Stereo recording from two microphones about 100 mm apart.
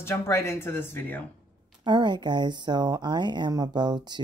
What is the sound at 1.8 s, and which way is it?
Speech, 50° right (ahead or behind).